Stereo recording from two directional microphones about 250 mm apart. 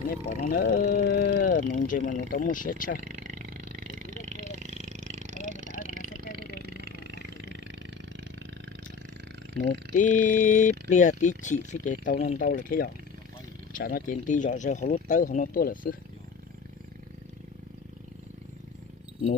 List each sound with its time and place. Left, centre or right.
0.3 s speech: left
3.0 s roaring cats: right
6.8 s a sound: right
9.9 s speech: left